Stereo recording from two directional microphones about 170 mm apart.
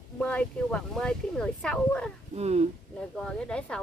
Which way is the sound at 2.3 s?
40° right (ahead or behind).